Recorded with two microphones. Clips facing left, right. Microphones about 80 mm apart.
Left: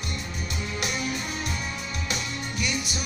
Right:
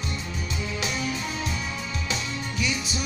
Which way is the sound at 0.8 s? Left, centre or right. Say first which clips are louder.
Even; left.